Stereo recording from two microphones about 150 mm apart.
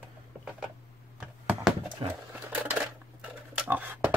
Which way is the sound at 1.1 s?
5° right (ahead or behind).